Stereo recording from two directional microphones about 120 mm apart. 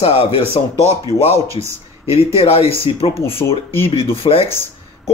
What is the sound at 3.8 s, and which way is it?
Speech, 50° left (ahead or behind).